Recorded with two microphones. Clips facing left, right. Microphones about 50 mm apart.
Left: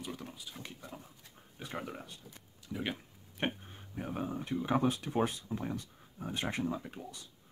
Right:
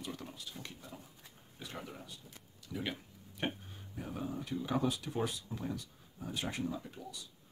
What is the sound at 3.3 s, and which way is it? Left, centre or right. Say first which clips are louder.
Speech: left 2 dB; left.